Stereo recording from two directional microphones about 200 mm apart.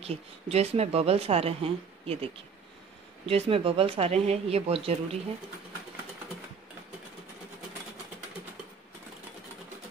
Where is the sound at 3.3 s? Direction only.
30° right (ahead or behind).